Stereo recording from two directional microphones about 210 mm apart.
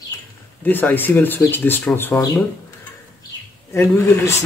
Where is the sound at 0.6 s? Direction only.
10° left (ahead or behind).